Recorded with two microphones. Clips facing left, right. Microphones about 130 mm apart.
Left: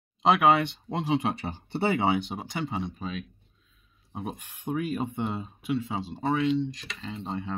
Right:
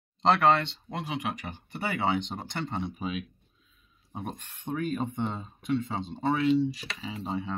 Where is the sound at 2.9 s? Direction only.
10° right (ahead or behind).